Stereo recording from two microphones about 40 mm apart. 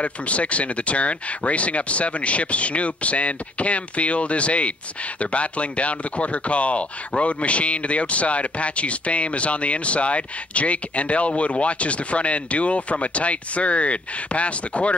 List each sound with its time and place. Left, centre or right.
0.0 s speech: left